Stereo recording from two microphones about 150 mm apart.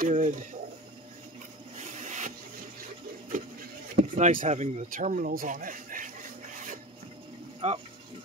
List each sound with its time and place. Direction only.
0.1 s speech: 60° right (ahead or behind)
1.8 s rub: 50° right (ahead or behind)
2.8 s wood: 65° right (ahead or behind)
3.9 s speech: 60° right (ahead or behind)
4.8 s speech: 65° right (ahead or behind)
7.6 s speech: 45° right (ahead or behind)